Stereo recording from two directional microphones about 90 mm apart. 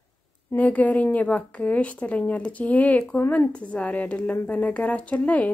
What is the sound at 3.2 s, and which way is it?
Speech, 25° left (ahead or behind).